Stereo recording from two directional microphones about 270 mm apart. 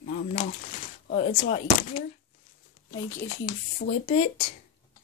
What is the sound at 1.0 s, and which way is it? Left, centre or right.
Speech, left.